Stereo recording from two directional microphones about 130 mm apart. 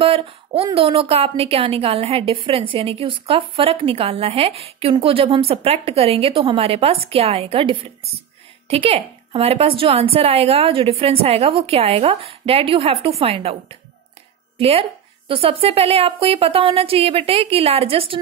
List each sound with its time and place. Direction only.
0.0 s speech: 45° right (ahead or behind)